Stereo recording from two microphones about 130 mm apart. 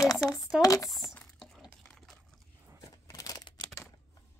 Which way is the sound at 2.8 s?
25° left (ahead or behind).